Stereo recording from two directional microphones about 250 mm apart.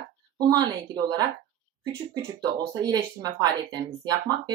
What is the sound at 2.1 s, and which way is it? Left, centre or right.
Speech, centre.